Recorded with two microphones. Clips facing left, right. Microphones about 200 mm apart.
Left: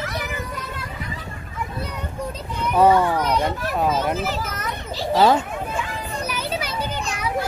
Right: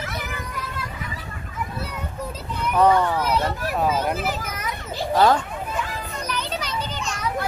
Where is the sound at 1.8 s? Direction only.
5° right (ahead or behind).